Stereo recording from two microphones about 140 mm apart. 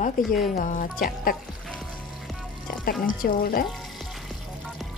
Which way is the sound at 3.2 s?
90° left.